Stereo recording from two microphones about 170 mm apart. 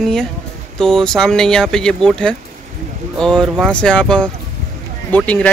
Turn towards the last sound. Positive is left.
turn(degrees=10)  # may be behind; listen again after turning